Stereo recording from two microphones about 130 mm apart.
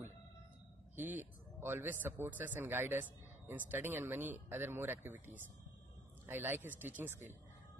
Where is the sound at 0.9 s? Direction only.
15° right (ahead or behind).